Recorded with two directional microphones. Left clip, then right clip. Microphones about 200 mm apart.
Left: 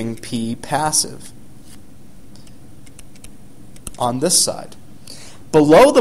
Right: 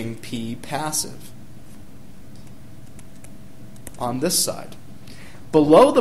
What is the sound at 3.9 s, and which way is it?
A man's voice, 35° left (ahead or behind).